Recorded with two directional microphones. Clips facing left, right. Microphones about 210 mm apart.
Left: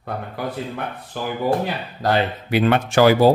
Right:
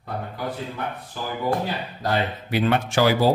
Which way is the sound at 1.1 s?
65° left (ahead or behind).